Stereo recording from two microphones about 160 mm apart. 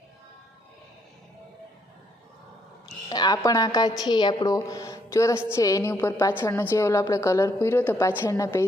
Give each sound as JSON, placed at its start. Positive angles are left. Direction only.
{"t": 3.1, "sound": "a woman's voice", "side_deg": 25}